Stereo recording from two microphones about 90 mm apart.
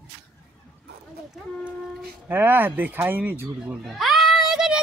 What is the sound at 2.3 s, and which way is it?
Speech, 20° right (ahead or behind).